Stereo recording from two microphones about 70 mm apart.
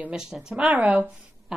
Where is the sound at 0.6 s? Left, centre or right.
Right.